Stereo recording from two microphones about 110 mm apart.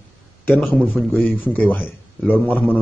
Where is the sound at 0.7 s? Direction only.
15° left (ahead or behind).